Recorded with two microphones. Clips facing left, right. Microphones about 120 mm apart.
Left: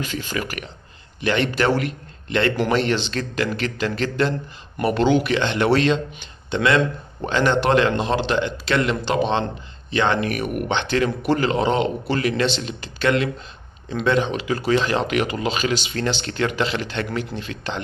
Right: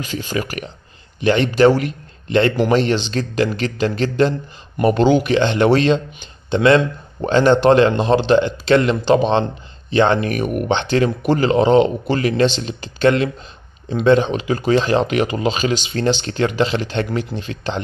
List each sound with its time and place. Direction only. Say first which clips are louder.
0.1 s speech: right 4 dB; 15° right (ahead or behind)
0.4 s a man's voice: right 4 dB; 30° right (ahead or behind)